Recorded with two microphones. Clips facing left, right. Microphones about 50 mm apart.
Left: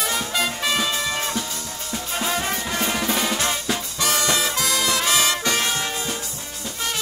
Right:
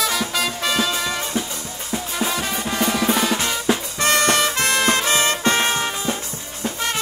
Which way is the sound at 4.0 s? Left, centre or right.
Right.